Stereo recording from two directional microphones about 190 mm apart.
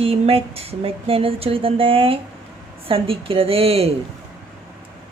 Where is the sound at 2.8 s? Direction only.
30° right (ahead or behind).